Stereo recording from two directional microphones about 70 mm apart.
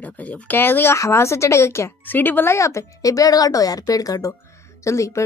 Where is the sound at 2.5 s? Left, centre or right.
Left.